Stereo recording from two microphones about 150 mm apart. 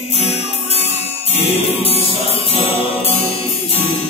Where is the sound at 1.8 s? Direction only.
40° left (ahead or behind).